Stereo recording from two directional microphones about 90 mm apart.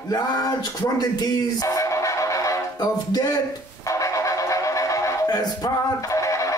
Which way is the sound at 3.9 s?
35° left (ahead or behind).